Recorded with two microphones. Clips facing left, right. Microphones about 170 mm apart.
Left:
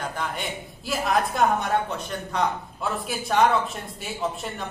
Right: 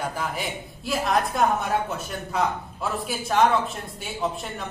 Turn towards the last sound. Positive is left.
turn(degrees=0)  # may be behind; listen again after turning